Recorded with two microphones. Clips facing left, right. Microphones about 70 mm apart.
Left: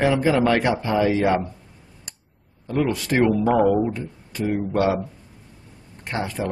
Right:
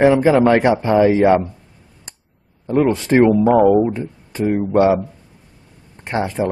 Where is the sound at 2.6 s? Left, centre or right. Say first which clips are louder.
Right 7 dB; right.